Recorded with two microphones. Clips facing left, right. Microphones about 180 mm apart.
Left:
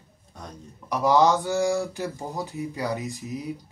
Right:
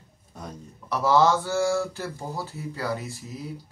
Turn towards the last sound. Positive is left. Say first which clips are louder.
# left 4 dB
turn(degrees=15)  # may be behind; listen again after turning